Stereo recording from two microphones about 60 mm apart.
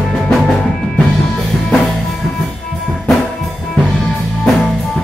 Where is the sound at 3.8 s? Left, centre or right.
Left.